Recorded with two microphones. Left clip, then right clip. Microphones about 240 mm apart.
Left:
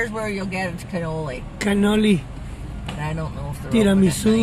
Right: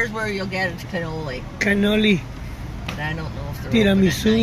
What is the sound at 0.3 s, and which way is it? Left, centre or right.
Speech, left.